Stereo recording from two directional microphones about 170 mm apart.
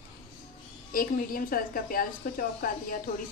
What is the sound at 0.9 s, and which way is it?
A woman's voice, 55° left (ahead or behind).